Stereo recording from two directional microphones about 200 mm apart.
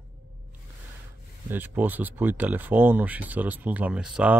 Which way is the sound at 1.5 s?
10° right (ahead or behind).